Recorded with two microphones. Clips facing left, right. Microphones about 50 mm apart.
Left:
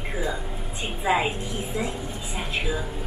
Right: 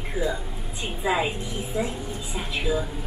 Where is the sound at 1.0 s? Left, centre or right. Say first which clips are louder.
Left 1 dB; centre.